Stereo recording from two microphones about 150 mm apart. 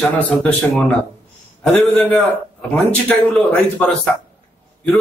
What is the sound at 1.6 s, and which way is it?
A man's voice, 10° left (ahead or behind).